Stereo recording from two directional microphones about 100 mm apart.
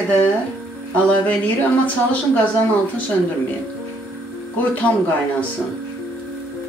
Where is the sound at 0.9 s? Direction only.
15° left (ahead or behind).